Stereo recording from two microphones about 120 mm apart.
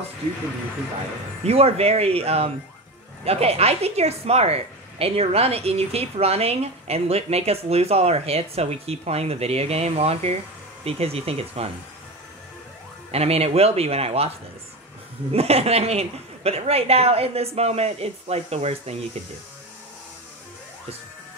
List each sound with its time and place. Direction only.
1.4 s a woman's voice: 60° right (ahead or behind)
13.1 s a woman's voice: 60° right (ahead or behind)
15.3 s a woman's voice: 60° right (ahead or behind)